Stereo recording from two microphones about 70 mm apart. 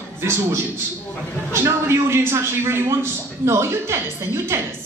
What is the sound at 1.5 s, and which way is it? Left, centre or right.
A man's voice, right.